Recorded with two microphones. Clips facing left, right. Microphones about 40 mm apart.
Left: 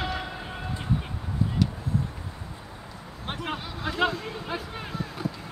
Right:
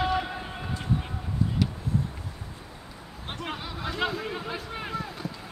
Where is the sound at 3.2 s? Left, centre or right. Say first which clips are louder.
Left 2 dB; centre.